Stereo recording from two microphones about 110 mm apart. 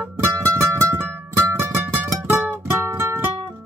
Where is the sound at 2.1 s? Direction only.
20° right (ahead or behind).